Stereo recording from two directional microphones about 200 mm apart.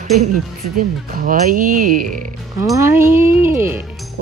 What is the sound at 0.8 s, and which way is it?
Speech, 45° right (ahead or behind).